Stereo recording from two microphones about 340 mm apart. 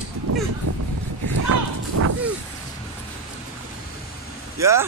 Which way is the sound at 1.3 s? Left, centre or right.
Right.